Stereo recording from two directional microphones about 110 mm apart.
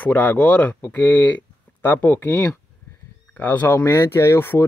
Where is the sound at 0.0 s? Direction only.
15° left (ahead or behind).